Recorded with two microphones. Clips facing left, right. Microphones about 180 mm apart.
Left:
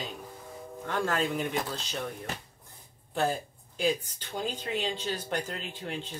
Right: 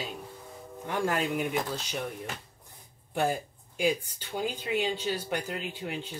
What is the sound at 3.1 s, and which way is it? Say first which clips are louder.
Speech: right 1 dB; 10° right (ahead or behind).